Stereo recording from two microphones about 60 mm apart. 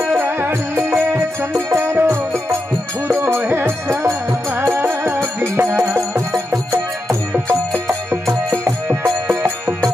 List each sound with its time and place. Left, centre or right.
0.1 s music: right
8.8 s music: centre